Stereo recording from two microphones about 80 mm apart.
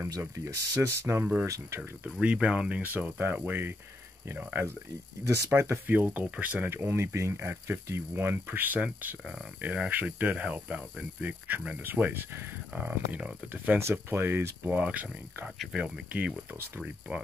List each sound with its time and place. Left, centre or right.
0.2 s speech: right
1.8 s speech: centre
5.2 s speech: right
5.9 s speech: right
6.7 s speech: right
13.7 s speech: right; by 17.2 s centre